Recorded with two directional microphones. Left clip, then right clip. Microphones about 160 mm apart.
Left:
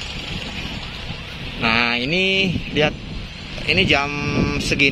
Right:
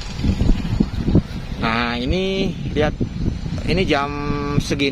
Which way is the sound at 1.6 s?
10° right (ahead or behind).